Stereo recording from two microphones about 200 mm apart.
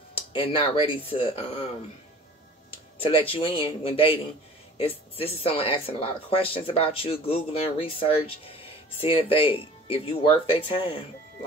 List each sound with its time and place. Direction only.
0.1 s speech: 25° left (ahead or behind)
3.0 s speech: 25° left (ahead or behind)